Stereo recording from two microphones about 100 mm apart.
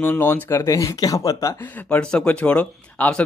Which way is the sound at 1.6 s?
15° left (ahead or behind).